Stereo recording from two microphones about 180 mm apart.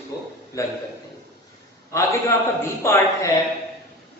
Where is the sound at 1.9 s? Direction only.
15° left (ahead or behind).